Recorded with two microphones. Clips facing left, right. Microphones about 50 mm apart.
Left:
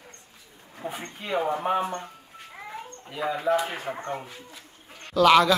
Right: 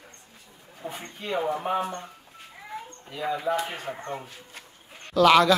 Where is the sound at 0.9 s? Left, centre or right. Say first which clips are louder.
Left 1 dB; centre.